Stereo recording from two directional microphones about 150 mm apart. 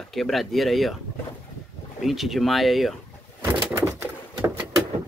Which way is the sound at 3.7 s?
20° right (ahead or behind).